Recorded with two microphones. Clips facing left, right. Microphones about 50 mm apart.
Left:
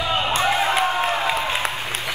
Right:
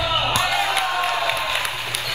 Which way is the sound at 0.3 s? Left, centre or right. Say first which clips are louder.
Left 1 dB; left.